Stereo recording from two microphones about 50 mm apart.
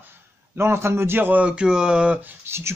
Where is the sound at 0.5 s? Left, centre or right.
Right.